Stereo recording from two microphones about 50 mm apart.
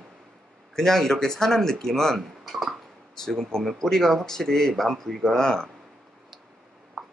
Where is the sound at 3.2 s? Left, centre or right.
Centre.